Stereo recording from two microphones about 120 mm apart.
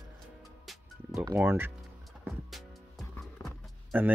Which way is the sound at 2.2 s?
Centre (ahead or behind).